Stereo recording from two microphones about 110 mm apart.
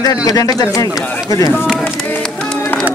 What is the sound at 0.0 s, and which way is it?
Speech, 35° left (ahead or behind).